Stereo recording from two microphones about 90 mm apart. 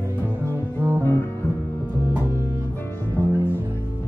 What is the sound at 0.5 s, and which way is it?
Music, 25° right (ahead or behind).